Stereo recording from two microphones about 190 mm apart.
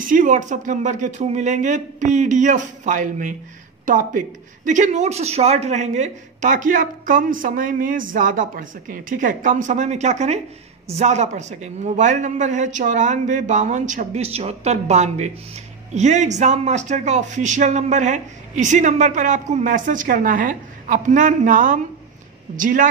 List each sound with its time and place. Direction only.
0.1 s speech: 45° right (ahead or behind)